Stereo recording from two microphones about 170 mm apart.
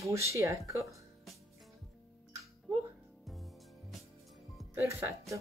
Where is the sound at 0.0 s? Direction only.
15° right (ahead or behind).